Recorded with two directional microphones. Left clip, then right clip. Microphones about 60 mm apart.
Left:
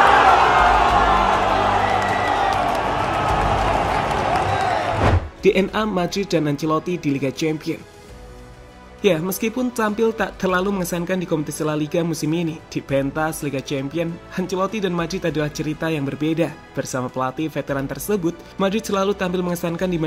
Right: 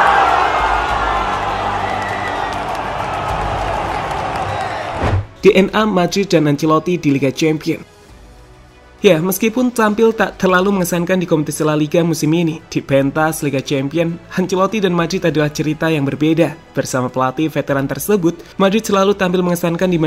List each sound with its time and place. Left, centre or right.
0.0 s music: centre
5.4 s speech: right
9.0 s speech: right